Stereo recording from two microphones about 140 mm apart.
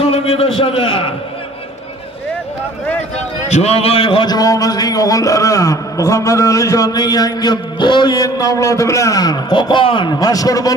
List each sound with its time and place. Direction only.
0.0 s a man's voice: 45° left (ahead or behind)
3.4 s a man's voice: 50° left (ahead or behind); by 10.7 s 25° left (ahead or behind)